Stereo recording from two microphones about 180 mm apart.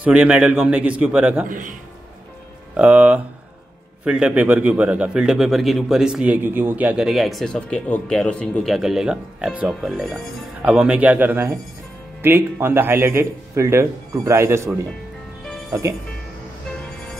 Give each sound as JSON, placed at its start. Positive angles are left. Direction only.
{"t": 0.0, "sound": "a man's voice", "side_deg": -10}
{"t": 1.5, "sound": "a man's voice", "side_deg": -45}
{"t": 2.7, "sound": "a man's voice", "side_deg": -10}